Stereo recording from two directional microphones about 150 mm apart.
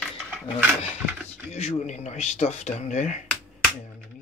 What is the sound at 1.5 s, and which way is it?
Speech, 50° left (ahead or behind).